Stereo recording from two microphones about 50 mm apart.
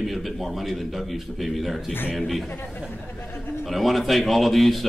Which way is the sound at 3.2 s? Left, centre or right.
Left.